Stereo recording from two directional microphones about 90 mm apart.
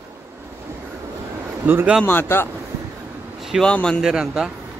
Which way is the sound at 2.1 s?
25° left (ahead or behind).